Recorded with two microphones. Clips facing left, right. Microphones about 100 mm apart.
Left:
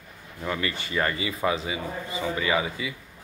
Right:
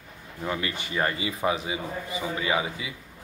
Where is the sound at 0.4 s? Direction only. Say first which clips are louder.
Left 1 dB; 15° right (ahead or behind).